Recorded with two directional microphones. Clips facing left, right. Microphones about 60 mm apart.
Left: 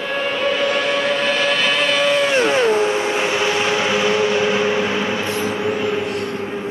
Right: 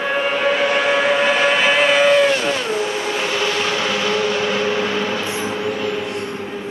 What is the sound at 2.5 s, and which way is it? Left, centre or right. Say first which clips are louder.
Vehicle: left 5 dB; left.